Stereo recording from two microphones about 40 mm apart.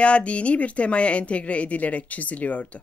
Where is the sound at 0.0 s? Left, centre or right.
Left.